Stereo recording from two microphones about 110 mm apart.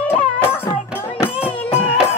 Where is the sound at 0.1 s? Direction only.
20° left (ahead or behind).